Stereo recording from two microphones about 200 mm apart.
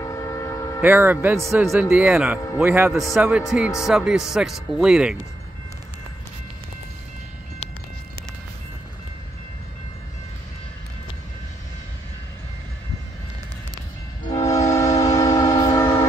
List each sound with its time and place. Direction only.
0.0 s train: 15° left (ahead or behind)
0.7 s a man's voice: 10° right (ahead or behind)
14.3 s train: 15° left (ahead or behind)